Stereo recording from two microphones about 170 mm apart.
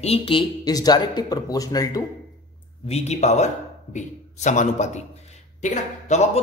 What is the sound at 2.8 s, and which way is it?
A man's voice, 40° left (ahead or behind).